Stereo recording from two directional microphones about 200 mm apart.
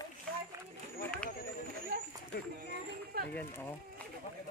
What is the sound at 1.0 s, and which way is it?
Speech, 5° left (ahead or behind).